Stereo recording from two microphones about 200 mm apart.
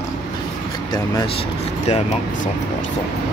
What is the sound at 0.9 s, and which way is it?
Speech, 20° left (ahead or behind).